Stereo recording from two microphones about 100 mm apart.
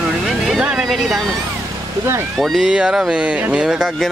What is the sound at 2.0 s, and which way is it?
Speech, 25° right (ahead or behind).